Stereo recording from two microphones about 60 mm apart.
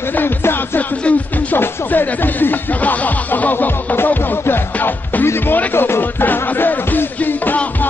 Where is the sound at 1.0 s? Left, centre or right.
Left.